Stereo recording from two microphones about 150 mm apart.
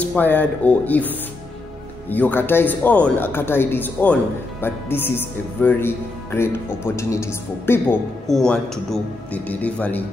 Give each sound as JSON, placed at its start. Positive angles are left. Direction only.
{"t": 0.0, "sound": "speech", "side_deg": 10}
{"t": 2.0, "sound": "speech", "side_deg": 10}